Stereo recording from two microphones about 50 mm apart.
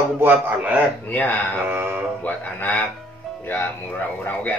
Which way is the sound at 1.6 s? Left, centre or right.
Right.